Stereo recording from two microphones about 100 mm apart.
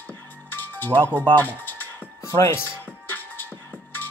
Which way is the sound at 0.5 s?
20° left (ahead or behind).